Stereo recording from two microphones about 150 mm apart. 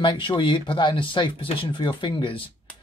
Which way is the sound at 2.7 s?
10° left (ahead or behind).